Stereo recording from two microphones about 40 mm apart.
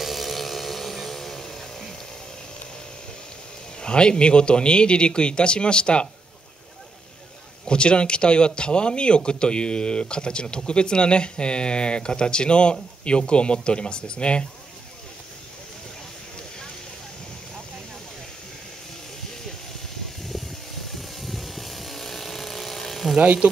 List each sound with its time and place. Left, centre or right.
0.0 s a sound: centre
3.8 s speech: left
7.6 s speech: left
20.2 s vehicle: centre
23.2 s speech: right